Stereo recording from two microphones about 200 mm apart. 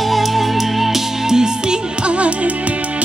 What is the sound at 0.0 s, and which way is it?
Music, centre (ahead or behind).